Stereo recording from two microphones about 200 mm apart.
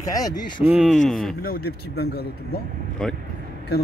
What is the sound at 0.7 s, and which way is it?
Speech, centre (ahead or behind).